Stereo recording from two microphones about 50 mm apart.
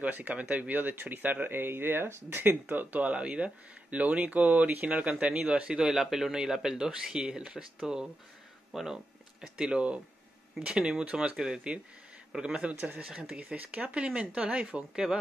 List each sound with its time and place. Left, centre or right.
0.0 s speech: right
5.9 s a man's voice: centre
12.7 s speech: right
13.0 s speech: centre